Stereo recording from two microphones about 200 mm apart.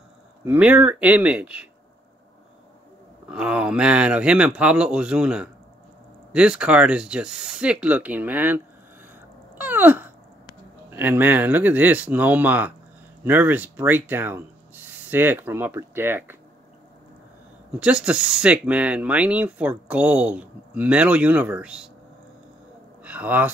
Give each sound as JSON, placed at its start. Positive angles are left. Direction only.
{"t": 0.5, "sound": "speech", "side_deg": -5}
{"t": 3.3, "sound": "speech", "side_deg": -5}
{"t": 9.6, "sound": "wail", "side_deg": -10}
{"t": 10.9, "sound": "speech", "side_deg": -10}
{"t": 17.7, "sound": "speech", "side_deg": -5}
{"t": 23.0, "sound": "speech", "side_deg": -5}